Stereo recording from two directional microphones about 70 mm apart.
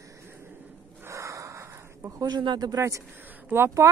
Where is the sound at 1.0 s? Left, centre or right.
Right.